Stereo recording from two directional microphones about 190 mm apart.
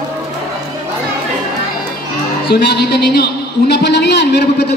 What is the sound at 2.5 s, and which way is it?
A man's voice, 60° left (ahead or behind).